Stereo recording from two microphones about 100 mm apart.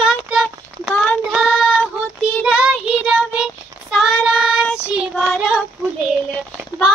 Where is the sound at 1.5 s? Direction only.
5° right (ahead or behind).